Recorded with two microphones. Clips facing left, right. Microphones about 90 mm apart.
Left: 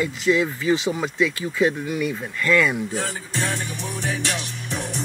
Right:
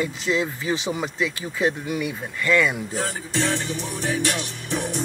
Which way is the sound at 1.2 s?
15° right (ahead or behind).